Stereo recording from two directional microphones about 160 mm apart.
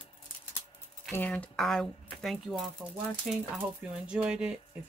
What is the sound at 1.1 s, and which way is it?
Speech, 10° left (ahead or behind).